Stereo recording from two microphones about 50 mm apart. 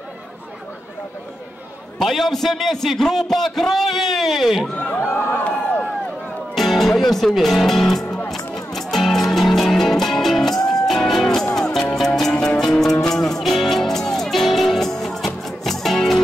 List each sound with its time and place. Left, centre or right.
2.0 s a man's voice: centre
4.7 s a sound: left
5.0 s a sound: left
5.4 s run: left
6.5 s speech: centre
8.3 s music: centre